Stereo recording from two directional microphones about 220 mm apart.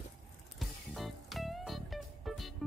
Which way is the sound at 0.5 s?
Centre (ahead or behind).